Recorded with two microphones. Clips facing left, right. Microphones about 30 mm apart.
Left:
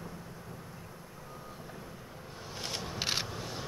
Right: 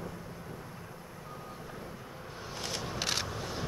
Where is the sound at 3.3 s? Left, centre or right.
Centre.